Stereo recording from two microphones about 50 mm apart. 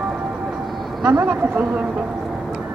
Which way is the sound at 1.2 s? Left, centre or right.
Right.